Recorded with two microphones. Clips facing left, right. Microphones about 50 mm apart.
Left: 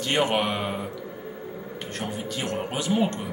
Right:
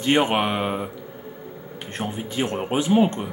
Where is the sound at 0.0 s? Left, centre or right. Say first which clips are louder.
Right 4 dB; right.